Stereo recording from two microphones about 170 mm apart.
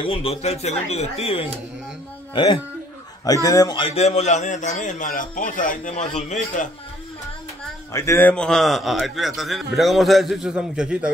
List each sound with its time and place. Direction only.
0.0 s a man's voice: 35° left (ahead or behind)
7.9 s a man's voice: 15° left (ahead or behind); by 11.1 s 5° right (ahead or behind)